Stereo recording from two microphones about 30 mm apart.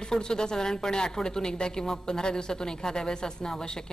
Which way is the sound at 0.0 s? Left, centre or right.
Left.